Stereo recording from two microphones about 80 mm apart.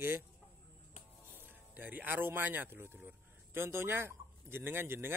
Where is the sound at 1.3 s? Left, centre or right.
Right.